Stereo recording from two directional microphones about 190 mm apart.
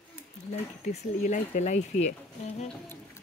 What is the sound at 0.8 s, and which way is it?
Speech, 40° left (ahead or behind).